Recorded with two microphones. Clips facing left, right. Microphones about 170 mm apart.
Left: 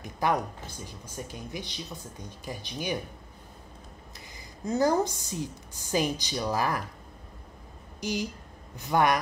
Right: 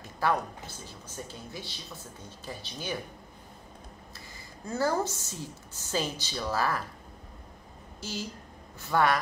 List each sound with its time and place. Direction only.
0.0 s speech: 15° left (ahead or behind)
4.6 s speech: 20° left (ahead or behind)
8.0 s a woman's voice: 15° left (ahead or behind)